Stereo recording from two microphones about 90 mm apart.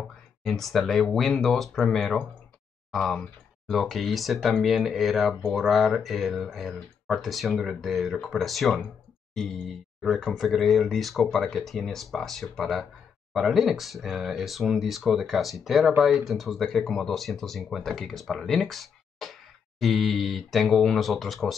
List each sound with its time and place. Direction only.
0.4 s speech: 5° left (ahead or behind)